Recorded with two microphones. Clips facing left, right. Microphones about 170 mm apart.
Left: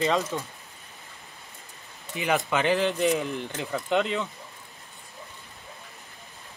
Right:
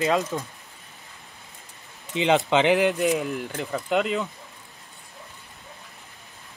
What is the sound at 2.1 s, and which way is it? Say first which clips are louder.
Speech: right 5 dB; 20° right (ahead or behind).